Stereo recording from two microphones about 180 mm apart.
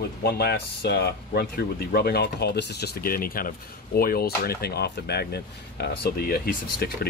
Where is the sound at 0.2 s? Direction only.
65° left (ahead or behind).